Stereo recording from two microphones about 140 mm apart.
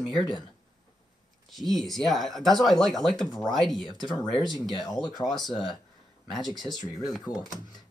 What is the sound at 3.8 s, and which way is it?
Speech, 30° left (ahead or behind).